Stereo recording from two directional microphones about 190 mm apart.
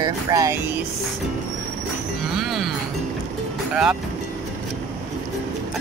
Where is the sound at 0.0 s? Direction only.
20° right (ahead or behind).